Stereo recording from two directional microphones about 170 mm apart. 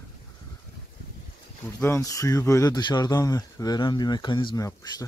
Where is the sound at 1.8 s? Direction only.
15° left (ahead or behind).